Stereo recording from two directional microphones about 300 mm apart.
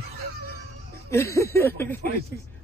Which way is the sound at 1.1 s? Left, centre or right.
Centre.